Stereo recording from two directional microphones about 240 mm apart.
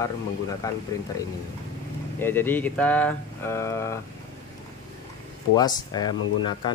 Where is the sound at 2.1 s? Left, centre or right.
Centre.